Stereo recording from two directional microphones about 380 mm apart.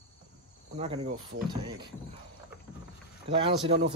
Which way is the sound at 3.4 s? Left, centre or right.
Centre.